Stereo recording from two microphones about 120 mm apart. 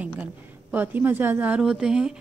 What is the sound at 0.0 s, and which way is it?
A woman's voice, 10° right (ahead or behind).